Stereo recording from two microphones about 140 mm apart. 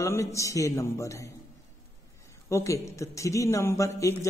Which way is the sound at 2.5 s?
20° left (ahead or behind).